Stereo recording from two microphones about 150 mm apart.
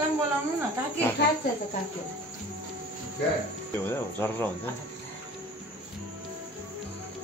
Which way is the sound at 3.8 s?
15° left (ahead or behind).